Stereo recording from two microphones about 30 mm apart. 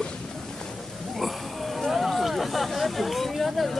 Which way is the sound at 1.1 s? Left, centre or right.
Centre.